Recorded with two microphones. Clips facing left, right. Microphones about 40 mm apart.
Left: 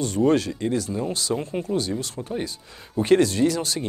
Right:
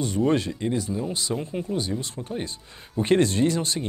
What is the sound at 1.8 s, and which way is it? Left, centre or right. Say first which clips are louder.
Speech: left 2 dB; right.